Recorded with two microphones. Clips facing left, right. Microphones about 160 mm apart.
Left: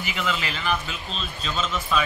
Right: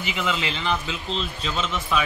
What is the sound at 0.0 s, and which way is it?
A man's voice, 20° right (ahead or behind).